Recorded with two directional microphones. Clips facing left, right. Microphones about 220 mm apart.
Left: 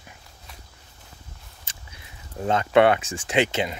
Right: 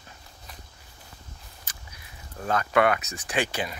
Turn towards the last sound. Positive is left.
turn(degrees=25)  # may be behind; listen again after turning